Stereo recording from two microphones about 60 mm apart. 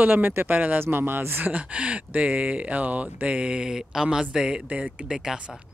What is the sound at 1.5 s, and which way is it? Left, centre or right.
Speech, centre.